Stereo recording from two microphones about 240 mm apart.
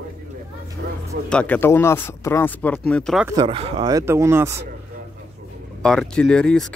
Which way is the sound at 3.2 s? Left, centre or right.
Centre.